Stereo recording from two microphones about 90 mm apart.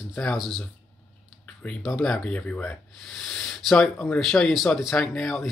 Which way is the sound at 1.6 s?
10° left (ahead or behind).